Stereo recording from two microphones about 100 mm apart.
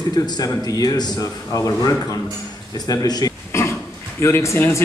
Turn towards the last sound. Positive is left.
turn(degrees=25)  # may be behind; listen again after turning